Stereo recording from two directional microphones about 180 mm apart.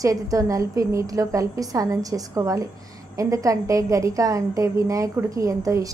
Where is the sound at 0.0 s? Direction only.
20° right (ahead or behind).